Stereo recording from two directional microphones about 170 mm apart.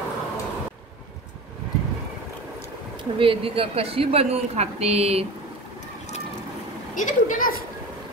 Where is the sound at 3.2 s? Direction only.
30° right (ahead or behind).